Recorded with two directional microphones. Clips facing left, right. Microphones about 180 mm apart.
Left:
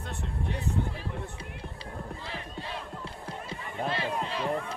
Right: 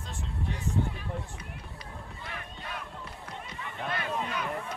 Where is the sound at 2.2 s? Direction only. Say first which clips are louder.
Left 3 dB; 30° left (ahead or behind).